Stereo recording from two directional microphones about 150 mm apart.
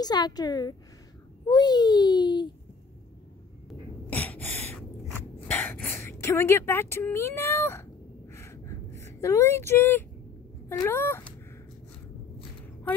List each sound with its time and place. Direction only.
0.0 s a child's voice: 25° left (ahead or behind)
4.1 s gasp: 15° left (ahead or behind)
5.5 s a sound: 15° left (ahead or behind)
10.7 s speech: 15° left (ahead or behind)